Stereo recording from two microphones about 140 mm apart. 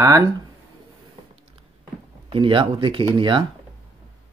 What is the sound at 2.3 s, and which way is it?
Speech, 40° right (ahead or behind).